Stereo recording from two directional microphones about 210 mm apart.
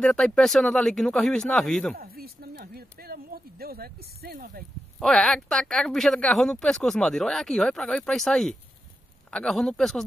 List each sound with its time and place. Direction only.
0.0 s speech: 5° left (ahead or behind)
2.0 s speech: 45° right (ahead or behind)
4.9 s speech: 5° left (ahead or behind)